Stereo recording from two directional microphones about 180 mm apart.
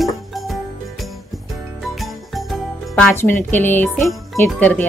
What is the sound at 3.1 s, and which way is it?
Speech, 15° left (ahead or behind).